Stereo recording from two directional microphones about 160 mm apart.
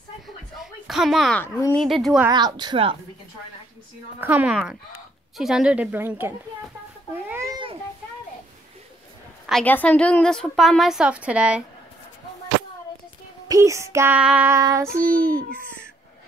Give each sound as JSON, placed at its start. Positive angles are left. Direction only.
{"t": 0.6, "sound": "a sound", "side_deg": 0}
{"t": 1.9, "sound": "a woman's voice", "side_deg": 0}
{"t": 2.2, "sound": "speech", "side_deg": -25}
{"t": 4.2, "sound": "child singing", "side_deg": -10}
{"t": 7.2, "sound": "a sound", "side_deg": -15}
{"t": 9.5, "sound": "a woman's voice", "side_deg": 5}
{"t": 13.5, "sound": "child singing", "side_deg": -20}
{"t": 14.6, "sound": "speech", "side_deg": -20}
{"t": 15.1, "sound": "a child's voice", "side_deg": 10}